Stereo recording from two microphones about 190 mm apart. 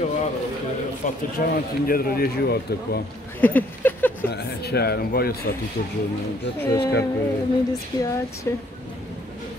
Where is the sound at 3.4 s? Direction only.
10° left (ahead or behind).